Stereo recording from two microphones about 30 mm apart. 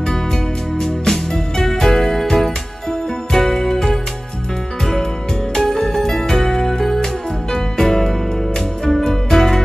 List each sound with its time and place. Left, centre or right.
0.7 s music: centre
5.6 s music: centre